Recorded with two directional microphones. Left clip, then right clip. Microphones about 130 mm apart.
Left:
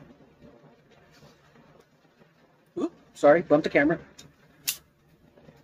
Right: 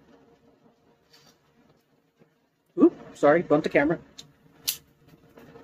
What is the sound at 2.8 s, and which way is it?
Speech, 25° right (ahead or behind).